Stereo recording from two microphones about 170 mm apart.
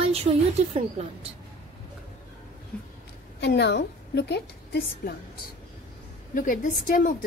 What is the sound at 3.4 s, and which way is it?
A woman's voice, 80° left.